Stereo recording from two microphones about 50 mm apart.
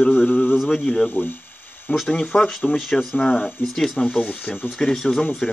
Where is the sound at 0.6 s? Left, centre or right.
Centre.